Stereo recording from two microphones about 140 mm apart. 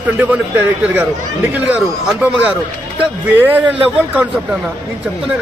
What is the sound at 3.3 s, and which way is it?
Speech, 15° right (ahead or behind).